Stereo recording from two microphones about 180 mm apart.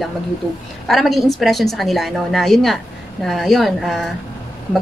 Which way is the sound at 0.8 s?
Centre (ahead or behind).